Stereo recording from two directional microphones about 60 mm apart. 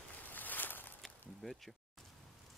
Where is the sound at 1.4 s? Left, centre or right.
Centre.